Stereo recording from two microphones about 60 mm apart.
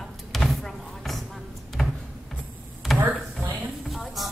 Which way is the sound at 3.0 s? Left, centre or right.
Right.